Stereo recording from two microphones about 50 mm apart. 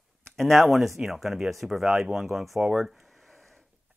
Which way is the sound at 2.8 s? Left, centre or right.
Centre.